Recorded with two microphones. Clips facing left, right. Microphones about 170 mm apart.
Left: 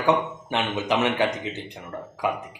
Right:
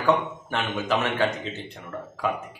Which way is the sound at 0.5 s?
20° left (ahead or behind).